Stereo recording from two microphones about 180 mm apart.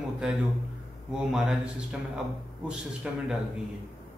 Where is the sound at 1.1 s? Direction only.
5° right (ahead or behind).